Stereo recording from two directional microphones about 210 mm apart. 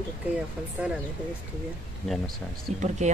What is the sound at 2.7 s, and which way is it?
Speech, 35° right (ahead or behind).